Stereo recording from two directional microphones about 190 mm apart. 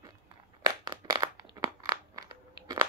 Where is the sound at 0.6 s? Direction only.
20° right (ahead or behind).